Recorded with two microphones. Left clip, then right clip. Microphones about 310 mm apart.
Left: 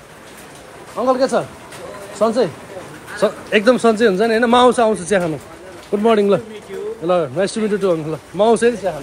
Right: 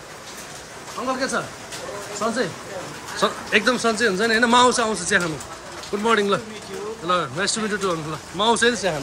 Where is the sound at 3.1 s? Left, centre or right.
Centre.